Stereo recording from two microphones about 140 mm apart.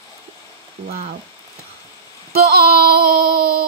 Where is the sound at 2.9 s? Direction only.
90° right.